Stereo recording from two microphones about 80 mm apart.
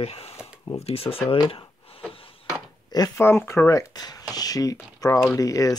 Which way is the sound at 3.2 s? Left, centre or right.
Left.